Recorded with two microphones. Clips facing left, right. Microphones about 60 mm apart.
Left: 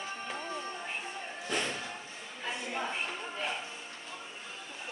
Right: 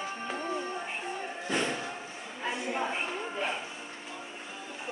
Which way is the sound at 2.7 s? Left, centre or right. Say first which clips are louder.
Right 2 dB; centre.